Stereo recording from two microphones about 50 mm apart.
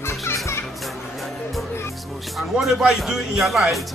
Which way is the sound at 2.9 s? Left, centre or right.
Centre.